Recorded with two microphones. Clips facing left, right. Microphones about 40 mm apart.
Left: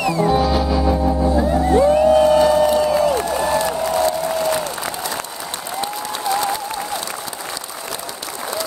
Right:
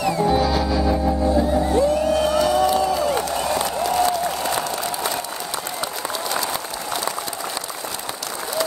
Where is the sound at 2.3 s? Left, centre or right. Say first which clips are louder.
Left 4 dB; left.